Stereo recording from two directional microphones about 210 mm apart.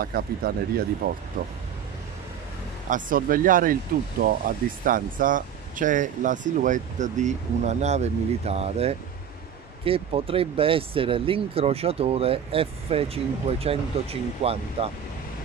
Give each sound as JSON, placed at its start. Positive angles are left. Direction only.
{"t": 0.0, "sound": "speech", "side_deg": -45}
{"t": 2.9, "sound": "speech", "side_deg": -40}